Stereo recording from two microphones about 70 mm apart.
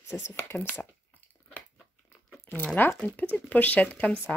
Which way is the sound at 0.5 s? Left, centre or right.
Left.